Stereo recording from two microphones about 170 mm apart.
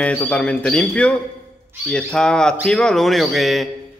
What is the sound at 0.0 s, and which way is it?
A man's voice, 5° left (ahead or behind).